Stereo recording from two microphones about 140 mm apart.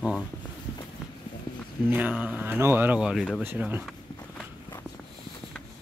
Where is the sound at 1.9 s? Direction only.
10° right (ahead or behind).